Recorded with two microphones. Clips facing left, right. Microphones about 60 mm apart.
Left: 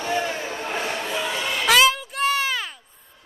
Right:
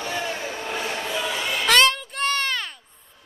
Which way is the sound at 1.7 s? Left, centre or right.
Centre.